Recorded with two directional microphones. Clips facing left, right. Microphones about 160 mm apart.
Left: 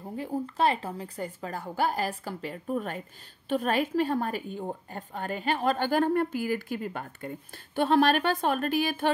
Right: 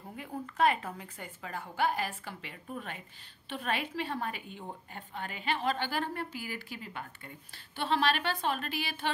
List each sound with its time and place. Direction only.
0.1 s a woman's voice: 30° left (ahead or behind)